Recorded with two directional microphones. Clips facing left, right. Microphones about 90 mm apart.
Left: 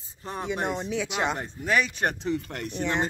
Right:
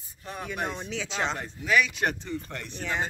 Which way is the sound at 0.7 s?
5° left (ahead or behind).